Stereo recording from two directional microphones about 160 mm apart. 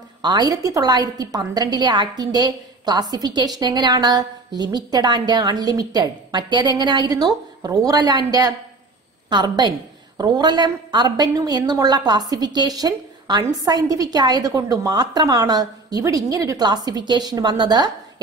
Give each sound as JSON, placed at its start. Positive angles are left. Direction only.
{"t": 0.2, "sound": "a woman's voice", "side_deg": -25}